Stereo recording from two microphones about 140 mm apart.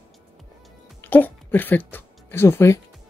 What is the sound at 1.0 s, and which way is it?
Speech, 15° left (ahead or behind).